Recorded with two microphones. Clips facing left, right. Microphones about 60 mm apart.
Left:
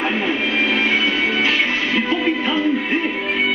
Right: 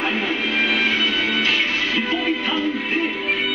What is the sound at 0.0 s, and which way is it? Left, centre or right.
Music, left.